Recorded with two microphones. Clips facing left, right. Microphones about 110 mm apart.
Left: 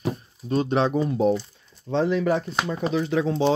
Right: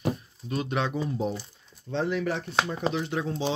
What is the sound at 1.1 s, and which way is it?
Speech, 80° left.